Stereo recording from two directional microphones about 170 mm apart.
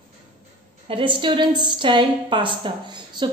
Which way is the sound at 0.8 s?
30° right (ahead or behind).